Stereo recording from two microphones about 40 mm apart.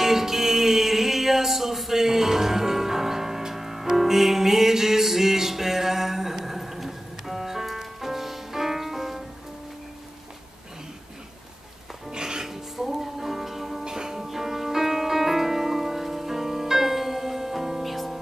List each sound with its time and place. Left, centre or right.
0.0 s music: centre
12.1 s music: centre
12.4 s music: centre